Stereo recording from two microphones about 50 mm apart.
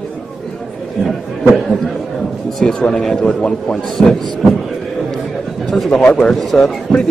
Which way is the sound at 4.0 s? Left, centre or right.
Centre.